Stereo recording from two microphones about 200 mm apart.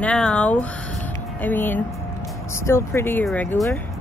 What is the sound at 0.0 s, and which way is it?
Speech, 5° left (ahead or behind).